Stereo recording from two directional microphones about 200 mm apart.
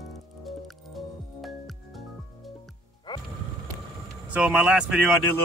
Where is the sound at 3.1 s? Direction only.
20° left (ahead or behind).